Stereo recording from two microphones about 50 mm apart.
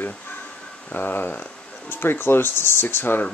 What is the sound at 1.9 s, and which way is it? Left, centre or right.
Speech, left.